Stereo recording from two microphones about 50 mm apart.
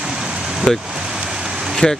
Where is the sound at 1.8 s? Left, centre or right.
Centre.